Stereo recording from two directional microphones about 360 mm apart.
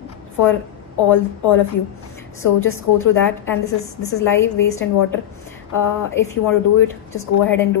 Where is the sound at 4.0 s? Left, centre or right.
Left.